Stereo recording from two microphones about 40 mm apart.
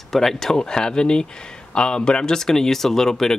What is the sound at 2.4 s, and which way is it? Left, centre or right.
Speech, centre.